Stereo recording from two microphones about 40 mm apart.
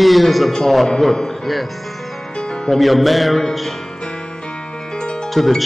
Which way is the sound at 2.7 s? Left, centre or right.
Centre.